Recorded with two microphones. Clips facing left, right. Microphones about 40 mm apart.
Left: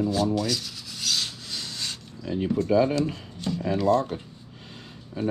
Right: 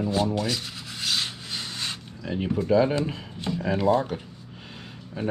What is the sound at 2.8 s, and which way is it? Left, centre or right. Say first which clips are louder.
Speech: even; right.